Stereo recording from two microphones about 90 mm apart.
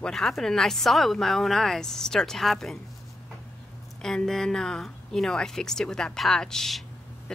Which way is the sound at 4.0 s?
5° left (ahead or behind).